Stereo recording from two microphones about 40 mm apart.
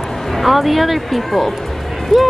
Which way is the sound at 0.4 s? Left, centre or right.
Centre.